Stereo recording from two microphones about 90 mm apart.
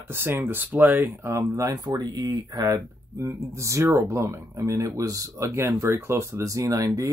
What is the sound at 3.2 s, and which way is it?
Speech, 35° right (ahead or behind).